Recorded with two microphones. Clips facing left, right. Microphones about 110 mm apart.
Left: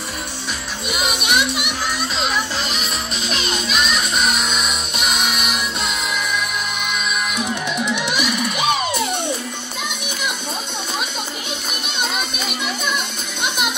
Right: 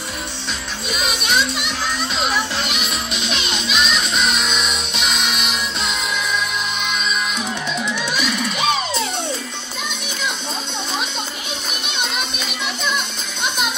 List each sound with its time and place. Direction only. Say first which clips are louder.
0.8 s music: left 1 dB; 10° left (ahead or behind)
2.1 s music: right 2 dB; centre (ahead or behind)
4.9 s music: left 2 dB; 50° left (ahead or behind)
6.9 s music: even; 5° left (ahead or behind)